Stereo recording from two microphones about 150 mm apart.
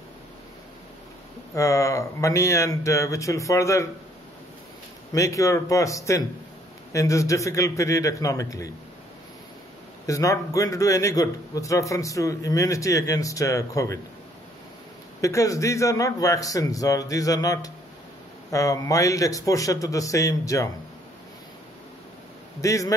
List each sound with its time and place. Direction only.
1.5 s a man's voice: 20° left (ahead or behind)
5.1 s a man's voice: 20° left (ahead or behind)
10.0 s a man's voice: 20° left (ahead or behind)
15.1 s a man's voice: 20° left (ahead or behind)
22.6 s a man's voice: 20° left (ahead or behind)